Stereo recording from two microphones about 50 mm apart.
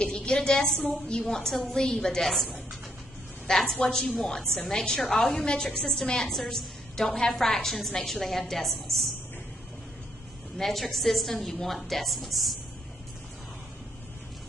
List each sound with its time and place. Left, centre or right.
0.0 s a sound: centre
0.7 s a woman's voice: centre
1.2 s a woman's voice: centre
5.5 s a woman's voice: centre
10.6 s a woman's voice: centre